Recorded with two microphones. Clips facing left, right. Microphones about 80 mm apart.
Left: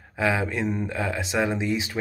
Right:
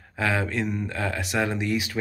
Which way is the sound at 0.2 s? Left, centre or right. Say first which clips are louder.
Left 1 dB; centre.